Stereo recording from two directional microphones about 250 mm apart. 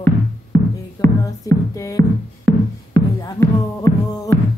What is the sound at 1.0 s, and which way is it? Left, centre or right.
Music, centre.